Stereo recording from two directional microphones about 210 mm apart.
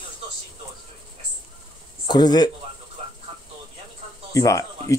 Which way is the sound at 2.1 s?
20° left (ahead or behind).